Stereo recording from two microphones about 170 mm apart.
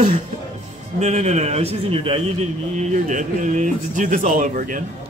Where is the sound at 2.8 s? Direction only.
45° right (ahead or behind).